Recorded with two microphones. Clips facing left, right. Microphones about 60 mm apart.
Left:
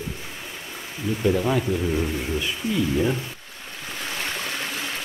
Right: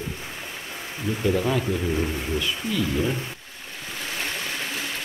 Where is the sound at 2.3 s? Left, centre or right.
Centre.